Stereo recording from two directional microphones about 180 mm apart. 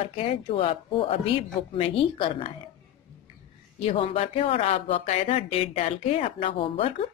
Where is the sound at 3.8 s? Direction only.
30° left (ahead or behind).